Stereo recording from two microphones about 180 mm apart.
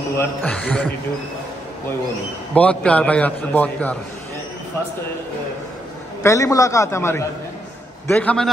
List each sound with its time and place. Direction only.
0.2 s a man's voice: 5° left (ahead or behind)
2.5 s a man's voice: 5° left (ahead or behind)
6.2 s a man's voice: 15° left (ahead or behind)